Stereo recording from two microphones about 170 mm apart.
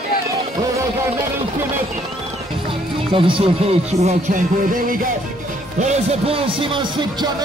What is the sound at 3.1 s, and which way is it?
Speech, 30° right (ahead or behind).